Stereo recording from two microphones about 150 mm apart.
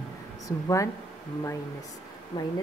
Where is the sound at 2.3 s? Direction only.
30° left (ahead or behind).